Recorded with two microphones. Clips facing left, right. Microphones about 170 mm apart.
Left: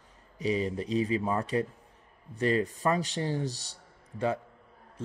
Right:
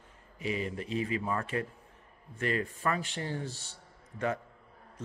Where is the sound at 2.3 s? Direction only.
35° left (ahead or behind).